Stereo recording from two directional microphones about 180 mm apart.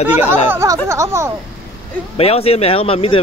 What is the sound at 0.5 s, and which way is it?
Speech, 15° right (ahead or behind).